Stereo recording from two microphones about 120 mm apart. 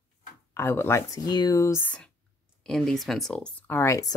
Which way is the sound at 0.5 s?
20° left (ahead or behind).